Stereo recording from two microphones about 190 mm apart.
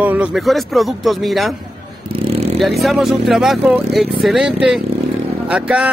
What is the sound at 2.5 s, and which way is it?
Speech, centre (ahead or behind).